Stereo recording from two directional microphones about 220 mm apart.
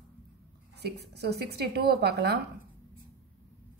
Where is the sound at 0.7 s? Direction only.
50° right (ahead or behind).